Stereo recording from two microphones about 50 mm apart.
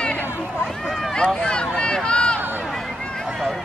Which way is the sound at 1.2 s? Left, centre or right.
Centre.